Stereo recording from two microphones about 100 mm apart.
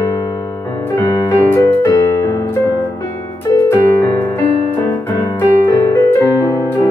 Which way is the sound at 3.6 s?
25° left (ahead or behind).